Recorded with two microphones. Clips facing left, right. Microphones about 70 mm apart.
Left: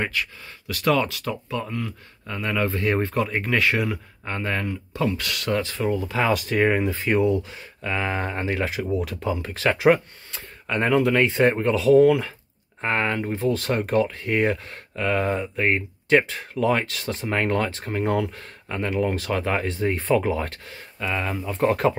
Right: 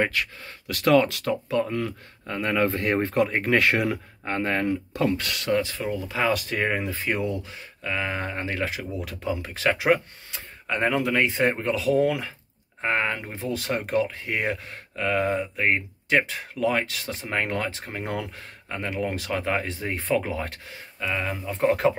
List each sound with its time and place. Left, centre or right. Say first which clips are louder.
0.7 s speech: right 2 dB; right
5.4 s speech: even; centre
5.8 s speech: left 3 dB; centre